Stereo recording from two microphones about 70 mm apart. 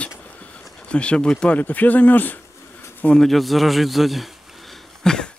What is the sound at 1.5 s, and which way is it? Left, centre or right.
Speech, left.